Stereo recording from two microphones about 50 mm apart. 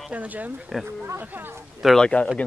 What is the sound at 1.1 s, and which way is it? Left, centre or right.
Speech, right.